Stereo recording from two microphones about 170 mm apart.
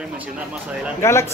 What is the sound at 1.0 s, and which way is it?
Speech, 15° left (ahead or behind).